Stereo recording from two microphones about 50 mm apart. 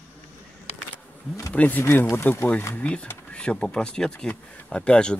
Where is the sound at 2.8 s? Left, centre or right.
Left.